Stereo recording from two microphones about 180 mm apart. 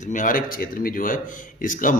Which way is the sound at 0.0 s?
45° left (ahead or behind).